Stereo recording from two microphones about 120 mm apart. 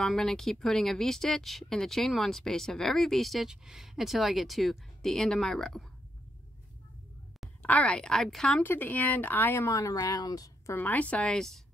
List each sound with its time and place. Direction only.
0.0 s speech: 5° left (ahead or behind)
7.6 s speech: 10° left (ahead or behind)
8.6 s speech: 15° left (ahead or behind); by 10.5 s 30° left (ahead or behind)
10.7 s a woman's voice: 15° left (ahead or behind)